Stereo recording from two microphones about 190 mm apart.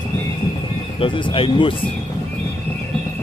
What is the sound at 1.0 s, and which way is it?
Speech, 30° left (ahead or behind).